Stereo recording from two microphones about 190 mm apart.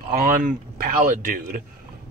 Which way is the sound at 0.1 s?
50° right (ahead or behind).